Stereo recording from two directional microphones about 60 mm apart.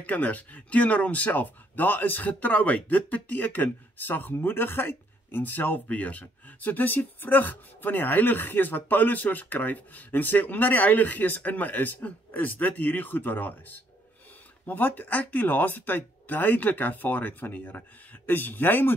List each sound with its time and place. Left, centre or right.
0.0 s speech: left